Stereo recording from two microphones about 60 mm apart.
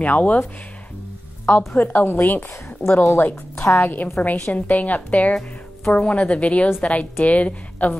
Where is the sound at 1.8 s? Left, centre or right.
Left.